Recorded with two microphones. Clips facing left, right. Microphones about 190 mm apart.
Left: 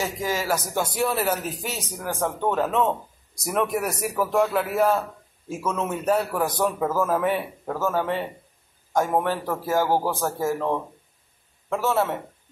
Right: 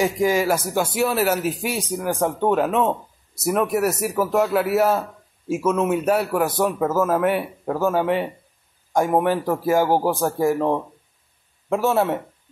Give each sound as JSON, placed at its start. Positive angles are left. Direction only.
{"t": 0.0, "sound": "a man's voice", "side_deg": -15}